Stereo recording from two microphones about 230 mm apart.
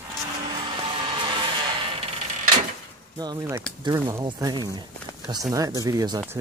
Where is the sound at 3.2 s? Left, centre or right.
Centre.